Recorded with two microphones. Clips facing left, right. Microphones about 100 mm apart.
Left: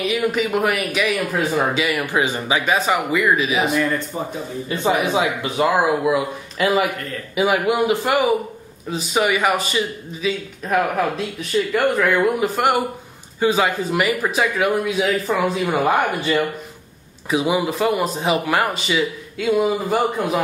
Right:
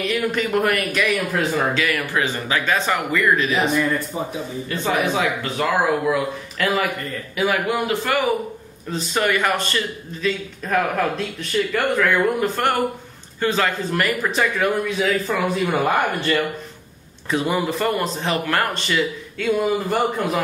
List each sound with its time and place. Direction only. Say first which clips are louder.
0.0 s speech: left 2 dB; 5° left (ahead or behind)
4.6 s a man's voice: left 2 dB; 20° left (ahead or behind)
8.9 s a man's voice: left 1 dB; 5° left (ahead or behind)